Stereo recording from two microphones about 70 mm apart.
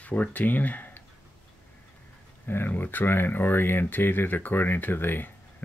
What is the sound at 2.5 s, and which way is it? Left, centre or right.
Speech, left.